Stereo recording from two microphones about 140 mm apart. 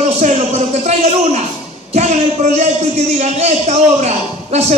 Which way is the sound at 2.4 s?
55° right (ahead or behind).